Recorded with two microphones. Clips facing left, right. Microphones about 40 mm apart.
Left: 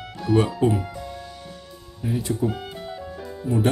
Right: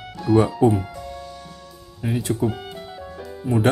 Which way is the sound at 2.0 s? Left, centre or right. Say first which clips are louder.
Right 2 dB; right.